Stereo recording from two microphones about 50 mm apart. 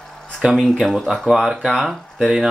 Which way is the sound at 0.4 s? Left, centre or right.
Centre.